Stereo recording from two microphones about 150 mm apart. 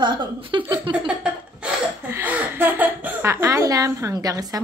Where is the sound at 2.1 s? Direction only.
15° right (ahead or behind).